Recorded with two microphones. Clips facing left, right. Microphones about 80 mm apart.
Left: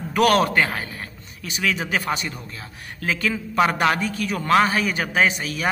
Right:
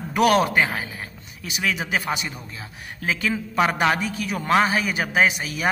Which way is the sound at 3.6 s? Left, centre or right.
Centre.